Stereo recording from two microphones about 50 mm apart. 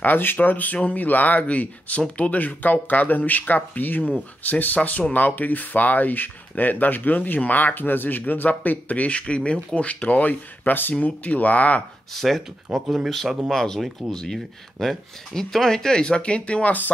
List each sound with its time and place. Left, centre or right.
0.0 s speech: left
12.2 s speech: centre; by 16.7 s left